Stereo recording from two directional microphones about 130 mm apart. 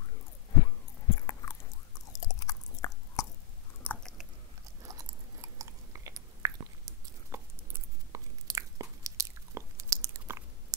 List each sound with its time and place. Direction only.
1.1 s chewing: 25° left (ahead or behind)
3.8 s biting: 10° left (ahead or behind)
4.8 s chewing: 25° right (ahead or behind)